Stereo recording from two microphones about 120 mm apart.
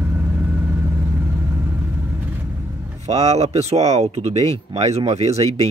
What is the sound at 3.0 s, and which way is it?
Speech, 65° right (ahead or behind).